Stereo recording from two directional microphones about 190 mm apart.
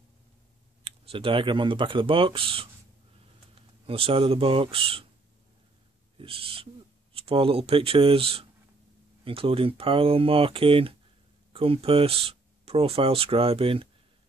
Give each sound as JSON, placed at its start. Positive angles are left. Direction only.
{"t": 0.8, "sound": "speech", "side_deg": -30}
{"t": 6.1, "sound": "speech", "side_deg": -30}